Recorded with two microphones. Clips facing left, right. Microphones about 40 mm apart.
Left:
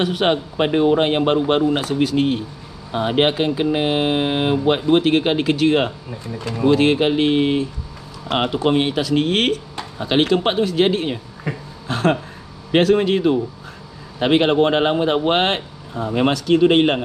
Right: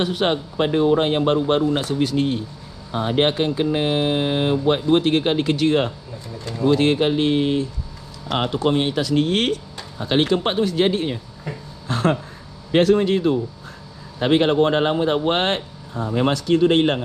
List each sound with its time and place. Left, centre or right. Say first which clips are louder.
0.0 s speech: left 2 dB; left
6.3 s speech: left 2 dB; left
11.4 s a sound: left 3 dB; left
12.7 s speech: left 1 dB; left
15.3 s speech: left 2 dB; left
16.1 s speech: left 2 dB; left